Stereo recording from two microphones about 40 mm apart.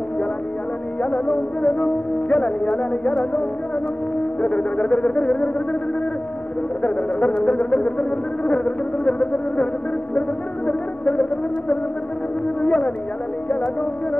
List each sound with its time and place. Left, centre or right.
1.0 s music: left
6.8 s music: left
10.7 s music: left
12.6 s music: left